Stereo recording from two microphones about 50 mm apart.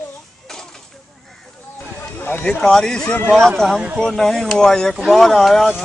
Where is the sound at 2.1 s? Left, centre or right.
Left.